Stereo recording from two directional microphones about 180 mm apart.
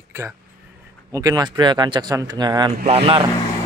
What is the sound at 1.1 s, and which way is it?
Speech, 20° right (ahead or behind).